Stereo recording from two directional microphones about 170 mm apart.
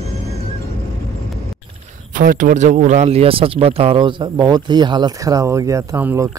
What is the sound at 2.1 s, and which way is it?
A man's voice, 50° right (ahead or behind).